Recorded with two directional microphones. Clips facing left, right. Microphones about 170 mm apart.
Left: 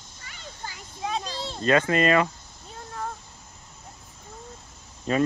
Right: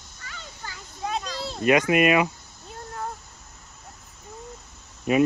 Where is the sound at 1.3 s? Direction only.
30° left (ahead or behind).